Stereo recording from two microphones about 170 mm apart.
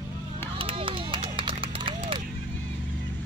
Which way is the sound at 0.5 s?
30° right (ahead or behind).